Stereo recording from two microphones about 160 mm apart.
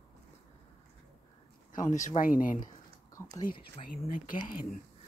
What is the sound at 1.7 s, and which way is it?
Speech, 50° left (ahead or behind).